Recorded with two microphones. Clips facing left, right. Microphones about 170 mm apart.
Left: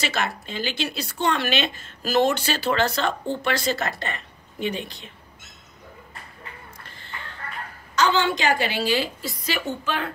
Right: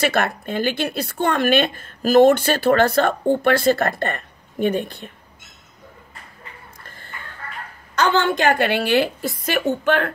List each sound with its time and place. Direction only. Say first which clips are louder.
0.0 s speech: right 7 dB; 55° right (ahead or behind)
7.9 s a woman's voice: right 3 dB; 55° right (ahead or behind)